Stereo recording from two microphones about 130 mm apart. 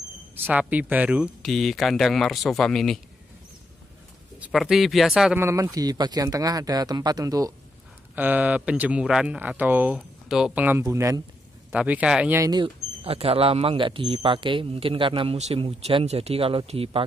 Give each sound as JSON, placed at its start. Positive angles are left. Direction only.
{"t": 0.5, "sound": "speech", "side_deg": -10}
{"t": 1.5, "sound": "speech", "side_deg": 0}
{"t": 4.4, "sound": "speech", "side_deg": -5}
{"t": 5.4, "sound": "speech", "side_deg": -25}
{"t": 8.2, "sound": "speech", "side_deg": -10}
{"t": 10.8, "sound": "speech", "side_deg": -25}
{"t": 11.7, "sound": "speech", "side_deg": -10}
{"t": 12.4, "sound": "speech", "side_deg": -30}
{"t": 13.0, "sound": "speech", "side_deg": -50}
{"t": 15.3, "sound": "speech", "side_deg": -55}